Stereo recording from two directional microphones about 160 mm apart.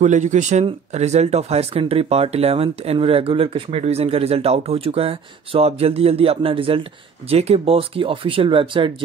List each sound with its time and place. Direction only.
0.0 s speech: 50° right (ahead or behind); by 8.9 s 30° right (ahead or behind)